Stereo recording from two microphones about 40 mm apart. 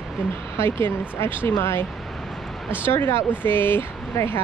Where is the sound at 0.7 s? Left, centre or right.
Left.